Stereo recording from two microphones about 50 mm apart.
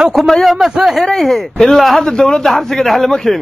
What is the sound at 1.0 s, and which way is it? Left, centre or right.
A man's voice, centre.